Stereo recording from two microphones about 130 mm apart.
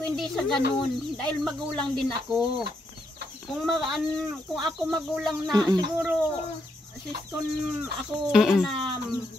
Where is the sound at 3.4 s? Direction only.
Centre (ahead or behind).